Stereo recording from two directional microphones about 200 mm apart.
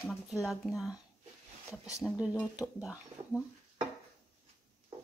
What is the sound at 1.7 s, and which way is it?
Speech, 15° left (ahead or behind).